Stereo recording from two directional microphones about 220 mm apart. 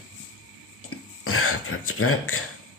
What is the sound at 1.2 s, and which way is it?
Throat clearing, 75° left (ahead or behind).